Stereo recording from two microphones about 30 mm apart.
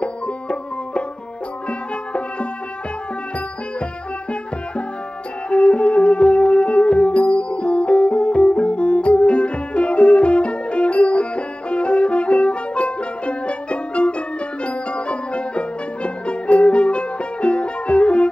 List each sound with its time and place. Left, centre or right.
0.0 s music: left
5.5 s music: left